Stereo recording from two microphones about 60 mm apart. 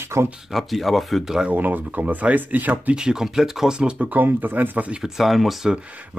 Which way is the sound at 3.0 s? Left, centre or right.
Centre.